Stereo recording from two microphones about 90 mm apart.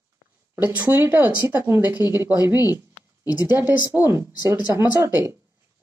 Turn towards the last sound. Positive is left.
turn(degrees=-25)  # may be behind; listen again after turning